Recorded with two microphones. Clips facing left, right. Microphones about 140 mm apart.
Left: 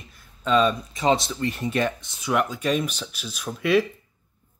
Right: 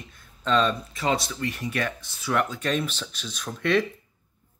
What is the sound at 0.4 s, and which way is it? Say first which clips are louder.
Speech: left 3 dB; 10° left (ahead or behind).